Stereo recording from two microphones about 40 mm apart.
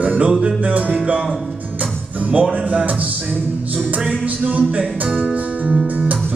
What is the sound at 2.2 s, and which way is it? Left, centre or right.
Music, right.